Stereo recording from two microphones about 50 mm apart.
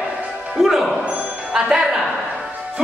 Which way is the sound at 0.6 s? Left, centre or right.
Centre.